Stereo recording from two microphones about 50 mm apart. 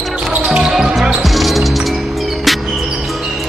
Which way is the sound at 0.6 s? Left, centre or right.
Centre.